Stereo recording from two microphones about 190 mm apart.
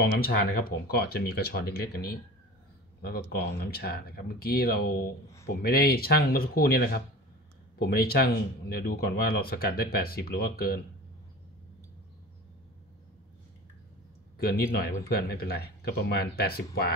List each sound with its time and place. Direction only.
0.0 s speech: 55° left (ahead or behind)
14.4 s speech: 55° left (ahead or behind)